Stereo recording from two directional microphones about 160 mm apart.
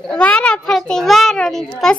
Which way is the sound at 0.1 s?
5° left (ahead or behind).